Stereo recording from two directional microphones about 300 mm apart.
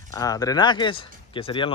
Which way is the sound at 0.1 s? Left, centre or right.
Centre.